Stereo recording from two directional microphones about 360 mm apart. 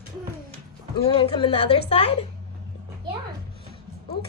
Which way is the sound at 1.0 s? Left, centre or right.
Centre.